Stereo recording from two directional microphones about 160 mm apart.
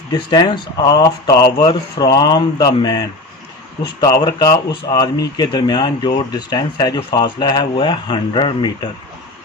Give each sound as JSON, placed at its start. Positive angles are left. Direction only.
{"t": 0.1, "sound": "speech", "side_deg": 25}